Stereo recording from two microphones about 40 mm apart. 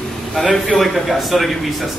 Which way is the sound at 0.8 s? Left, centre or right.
Centre.